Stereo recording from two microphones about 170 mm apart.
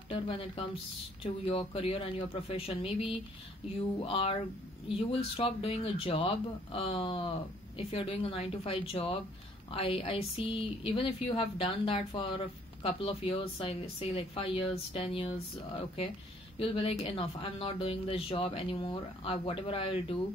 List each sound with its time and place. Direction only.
0.1 s speech: 30° left (ahead or behind)
16.5 s speech: 35° left (ahead or behind)